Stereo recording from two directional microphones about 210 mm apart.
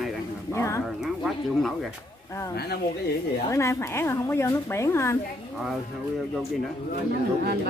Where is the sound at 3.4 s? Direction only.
15° left (ahead or behind).